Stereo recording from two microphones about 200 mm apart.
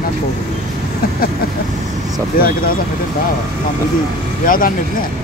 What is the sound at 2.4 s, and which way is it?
Speech, 50° left (ahead or behind).